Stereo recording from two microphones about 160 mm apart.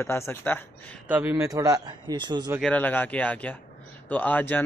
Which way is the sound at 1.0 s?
10° right (ahead or behind).